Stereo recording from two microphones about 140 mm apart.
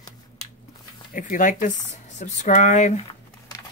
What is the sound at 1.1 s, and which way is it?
Speech, 65° left (ahead or behind).